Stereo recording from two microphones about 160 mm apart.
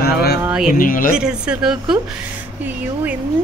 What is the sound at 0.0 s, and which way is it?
Speech, 75° left (ahead or behind).